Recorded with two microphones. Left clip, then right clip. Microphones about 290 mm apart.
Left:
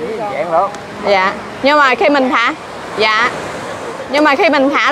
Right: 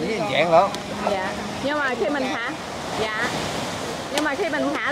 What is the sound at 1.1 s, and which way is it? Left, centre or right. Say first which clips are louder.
Speech: left 12 dB; left.